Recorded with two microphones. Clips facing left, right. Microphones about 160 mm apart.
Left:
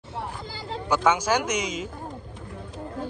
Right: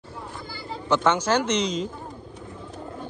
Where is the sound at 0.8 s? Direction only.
10° left (ahead or behind).